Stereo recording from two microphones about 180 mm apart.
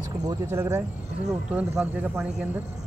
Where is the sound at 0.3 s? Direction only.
15° right (ahead or behind).